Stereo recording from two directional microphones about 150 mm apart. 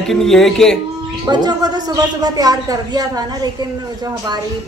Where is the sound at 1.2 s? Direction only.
25° right (ahead or behind).